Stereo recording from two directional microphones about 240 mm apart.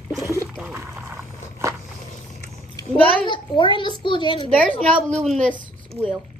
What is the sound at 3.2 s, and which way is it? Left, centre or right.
A child's voice, centre.